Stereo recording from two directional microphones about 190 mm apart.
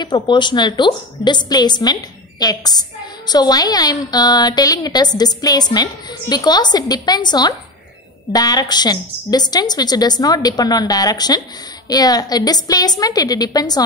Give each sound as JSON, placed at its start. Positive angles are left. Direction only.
{"t": 0.0, "sound": "a woman's voice", "side_deg": 25}